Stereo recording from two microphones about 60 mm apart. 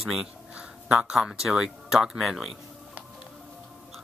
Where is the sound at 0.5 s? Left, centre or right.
Centre.